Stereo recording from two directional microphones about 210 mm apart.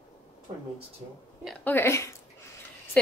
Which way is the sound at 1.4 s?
10° left (ahead or behind).